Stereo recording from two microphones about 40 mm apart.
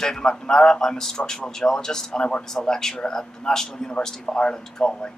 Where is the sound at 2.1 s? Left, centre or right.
Left.